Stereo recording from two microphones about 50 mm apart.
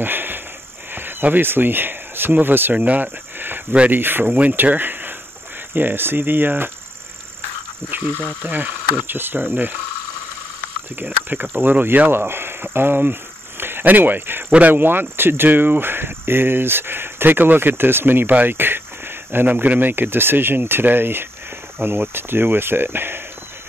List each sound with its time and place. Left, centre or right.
0.0 s a sound: right
0.9 s speech: right
2.7 s cricket: right
3.9 s speech: right
4.3 s speech: right
8.5 s speech: right
11.0 s speech: right
19.5 s speech: right